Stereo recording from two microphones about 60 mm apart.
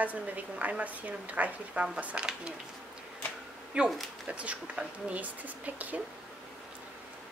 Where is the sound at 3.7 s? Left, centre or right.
Right.